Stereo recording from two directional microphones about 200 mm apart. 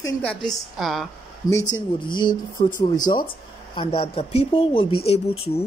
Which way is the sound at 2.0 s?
25° left (ahead or behind).